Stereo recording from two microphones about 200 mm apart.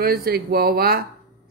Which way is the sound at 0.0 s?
50° right (ahead or behind).